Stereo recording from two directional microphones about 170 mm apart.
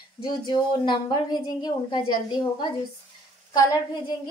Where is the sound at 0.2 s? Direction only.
25° left (ahead or behind).